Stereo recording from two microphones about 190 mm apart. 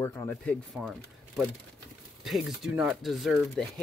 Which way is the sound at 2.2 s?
Centre (ahead or behind).